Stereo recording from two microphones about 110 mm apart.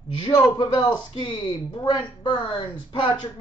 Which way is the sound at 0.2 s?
40° left (ahead or behind).